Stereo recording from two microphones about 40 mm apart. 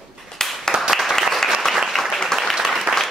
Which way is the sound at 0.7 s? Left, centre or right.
Centre.